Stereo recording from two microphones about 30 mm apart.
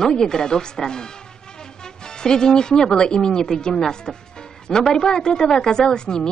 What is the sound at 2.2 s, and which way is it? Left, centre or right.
Speech, left.